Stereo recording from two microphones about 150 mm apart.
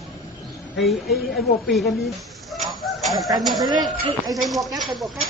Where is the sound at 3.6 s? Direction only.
25° right (ahead or behind).